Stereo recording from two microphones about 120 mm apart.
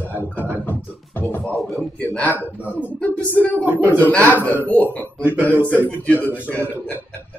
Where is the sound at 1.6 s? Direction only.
Centre (ahead or behind).